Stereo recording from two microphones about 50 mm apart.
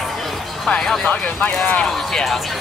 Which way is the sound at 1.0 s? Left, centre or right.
Left.